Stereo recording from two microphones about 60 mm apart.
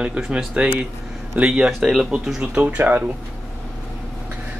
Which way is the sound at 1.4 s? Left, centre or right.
Centre.